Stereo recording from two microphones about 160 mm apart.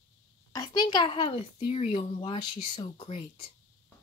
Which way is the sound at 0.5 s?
25° left (ahead or behind).